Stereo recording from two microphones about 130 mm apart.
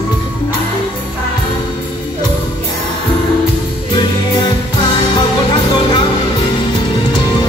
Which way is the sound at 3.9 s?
40° left (ahead or behind).